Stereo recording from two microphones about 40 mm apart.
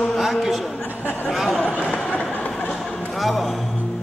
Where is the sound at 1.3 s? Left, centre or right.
Centre.